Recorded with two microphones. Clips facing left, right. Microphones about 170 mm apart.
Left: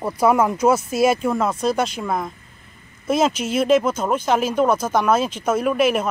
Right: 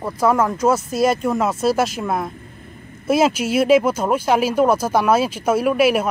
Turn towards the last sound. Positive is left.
turn(degrees=-10)  # may be behind; listen again after turning